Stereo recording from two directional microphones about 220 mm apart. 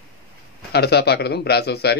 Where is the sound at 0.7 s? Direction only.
50° left (ahead or behind).